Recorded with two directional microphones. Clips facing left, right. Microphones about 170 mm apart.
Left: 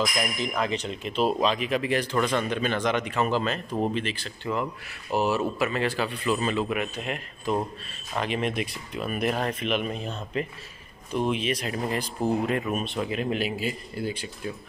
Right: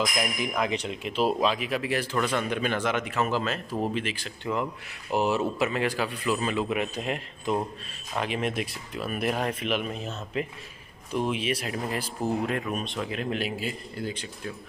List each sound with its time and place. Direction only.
0.6 s speech: 10° right (ahead or behind)
6.7 s speech: 25° right (ahead or behind)
8.2 s speech: 5° right (ahead or behind)